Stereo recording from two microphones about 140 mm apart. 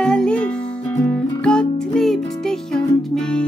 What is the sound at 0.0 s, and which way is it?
Music, 5° left (ahead or behind).